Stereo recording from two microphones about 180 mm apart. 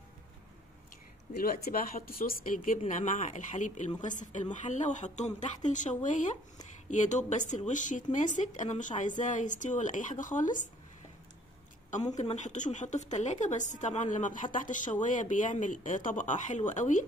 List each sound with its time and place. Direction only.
1.3 s speech: 55° left (ahead or behind)
12.2 s speech: 40° left (ahead or behind)